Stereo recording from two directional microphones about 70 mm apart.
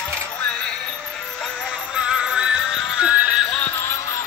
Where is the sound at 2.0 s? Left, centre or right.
Centre.